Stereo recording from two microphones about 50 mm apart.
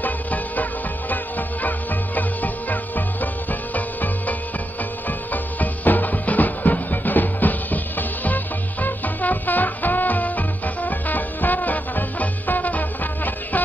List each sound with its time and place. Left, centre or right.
0.0 s music: left
2.1 s music: left